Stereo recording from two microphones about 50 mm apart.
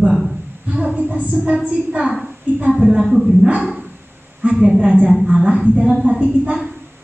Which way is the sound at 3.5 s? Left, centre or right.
Centre.